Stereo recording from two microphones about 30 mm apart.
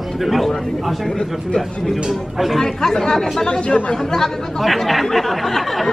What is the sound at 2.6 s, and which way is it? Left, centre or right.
Speech, centre.